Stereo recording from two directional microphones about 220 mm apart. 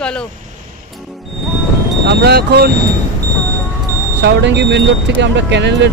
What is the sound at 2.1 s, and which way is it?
Speech, 45° right (ahead or behind).